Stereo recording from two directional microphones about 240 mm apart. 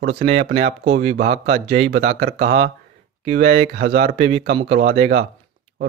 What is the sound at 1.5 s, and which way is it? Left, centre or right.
Speech, right.